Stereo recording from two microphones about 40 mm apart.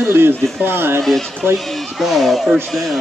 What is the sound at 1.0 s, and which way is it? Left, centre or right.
Speech, centre.